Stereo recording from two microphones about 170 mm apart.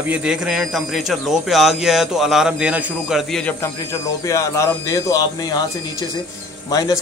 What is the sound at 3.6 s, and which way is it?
Speech, 20° left (ahead or behind).